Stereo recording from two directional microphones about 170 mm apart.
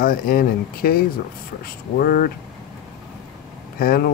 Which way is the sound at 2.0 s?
60° left (ahead or behind).